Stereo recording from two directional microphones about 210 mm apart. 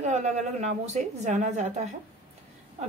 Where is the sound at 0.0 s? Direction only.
35° right (ahead or behind).